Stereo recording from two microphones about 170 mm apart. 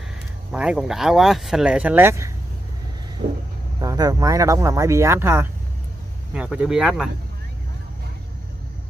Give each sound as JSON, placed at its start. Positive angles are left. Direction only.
{"t": 0.5, "sound": "speech", "side_deg": -5}
{"t": 3.2, "sound": "vehicle", "side_deg": -55}
{"t": 3.8, "sound": "speech", "side_deg": -20}